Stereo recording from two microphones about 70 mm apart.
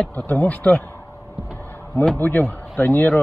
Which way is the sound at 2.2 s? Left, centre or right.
Left.